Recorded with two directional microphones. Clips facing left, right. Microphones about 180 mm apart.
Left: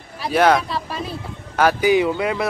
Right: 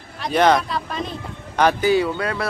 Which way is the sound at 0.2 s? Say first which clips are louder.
Left 1 dB; 5° left (ahead or behind).